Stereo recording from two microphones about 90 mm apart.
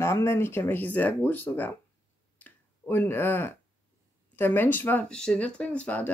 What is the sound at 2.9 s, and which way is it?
Speech, 25° left (ahead or behind).